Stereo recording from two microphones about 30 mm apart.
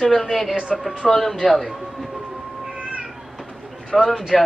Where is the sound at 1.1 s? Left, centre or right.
Centre.